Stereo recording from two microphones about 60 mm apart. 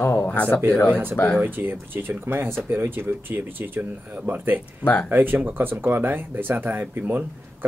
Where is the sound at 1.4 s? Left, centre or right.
Right.